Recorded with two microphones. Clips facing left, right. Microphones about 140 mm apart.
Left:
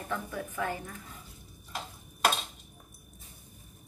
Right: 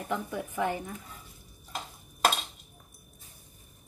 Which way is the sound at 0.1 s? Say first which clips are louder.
Right 3 dB; 20° right (ahead or behind).